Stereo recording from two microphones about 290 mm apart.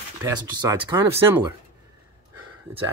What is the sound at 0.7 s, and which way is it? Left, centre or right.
Speech, centre.